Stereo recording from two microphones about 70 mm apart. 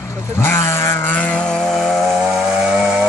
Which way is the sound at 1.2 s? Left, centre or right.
Centre.